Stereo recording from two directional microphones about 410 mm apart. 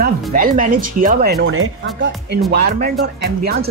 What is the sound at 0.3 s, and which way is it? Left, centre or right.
Speech, right.